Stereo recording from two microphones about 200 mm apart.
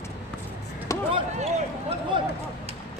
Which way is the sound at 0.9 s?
15° left (ahead or behind).